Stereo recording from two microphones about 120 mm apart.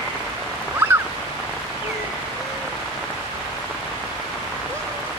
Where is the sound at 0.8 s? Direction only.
15° right (ahead or behind).